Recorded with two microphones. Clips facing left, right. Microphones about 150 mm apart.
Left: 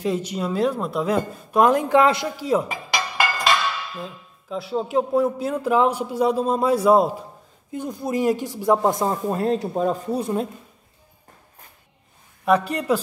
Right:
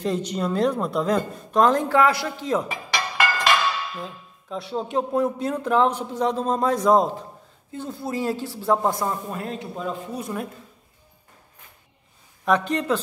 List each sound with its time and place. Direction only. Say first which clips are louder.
0.0 s speech: left 1 dB; 5° left (ahead or behind); by 2.3 s 20° left (ahead or behind)
2.3 s speech: left 3 dB; 10° left (ahead or behind)
4.0 s speech: left 1 dB; centre (ahead or behind); by 9.1 s 20° left (ahead or behind)
9.3 s speech: left 9 dB; 35° left (ahead or behind)
10.2 s speech: left 6 dB; 25° left (ahead or behind)
12.4 s speech: left 2 dB; 5° left (ahead or behind)